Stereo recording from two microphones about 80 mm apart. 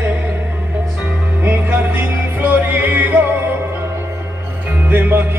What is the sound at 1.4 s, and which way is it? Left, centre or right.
Music, right.